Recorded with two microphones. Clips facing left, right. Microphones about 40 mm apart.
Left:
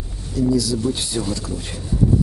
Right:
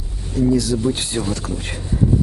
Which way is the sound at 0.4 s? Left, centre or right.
Right.